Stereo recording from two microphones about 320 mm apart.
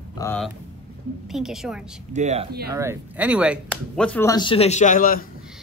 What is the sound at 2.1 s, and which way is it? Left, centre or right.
Speech, right.